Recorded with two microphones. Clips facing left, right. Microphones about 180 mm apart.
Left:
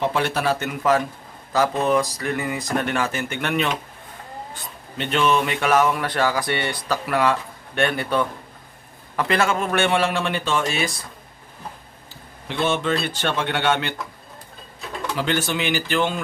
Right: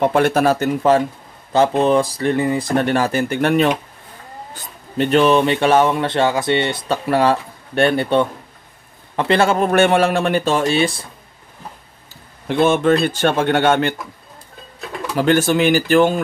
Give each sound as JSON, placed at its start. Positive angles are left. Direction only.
{"t": 0.0, "sound": "a man's voice", "side_deg": -50}
{"t": 4.9, "sound": "a man's voice", "side_deg": -40}
{"t": 12.4, "sound": "speech", "side_deg": -50}
{"t": 15.1, "sound": "speech", "side_deg": -45}